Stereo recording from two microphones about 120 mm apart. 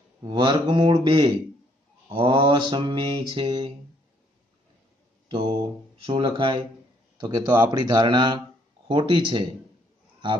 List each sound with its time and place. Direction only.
0.2 s speech: 40° right (ahead or behind)
2.0 s mantra: 45° right (ahead or behind)
5.3 s mantra: 50° right (ahead or behind)
7.2 s speech: 35° right (ahead or behind)
8.8 s mantra: 45° right (ahead or behind)